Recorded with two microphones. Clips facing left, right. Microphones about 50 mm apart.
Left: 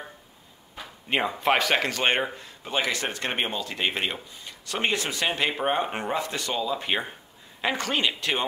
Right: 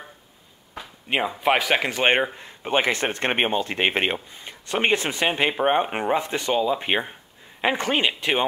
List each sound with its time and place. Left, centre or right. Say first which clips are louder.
0.7 s speech: right 2 dB; centre